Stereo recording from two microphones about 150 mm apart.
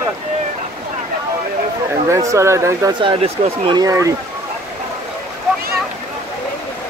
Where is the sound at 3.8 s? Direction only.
20° right (ahead or behind).